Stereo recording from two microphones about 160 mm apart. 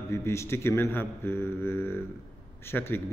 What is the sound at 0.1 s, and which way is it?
A man's voice, 15° left (ahead or behind).